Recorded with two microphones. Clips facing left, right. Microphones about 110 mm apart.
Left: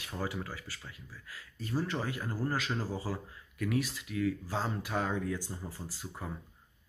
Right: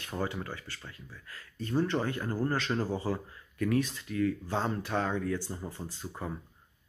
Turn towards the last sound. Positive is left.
turn(degrees=5)  # may be behind; listen again after turning